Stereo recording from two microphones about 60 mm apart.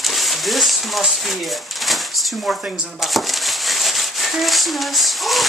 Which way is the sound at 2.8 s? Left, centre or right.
Centre.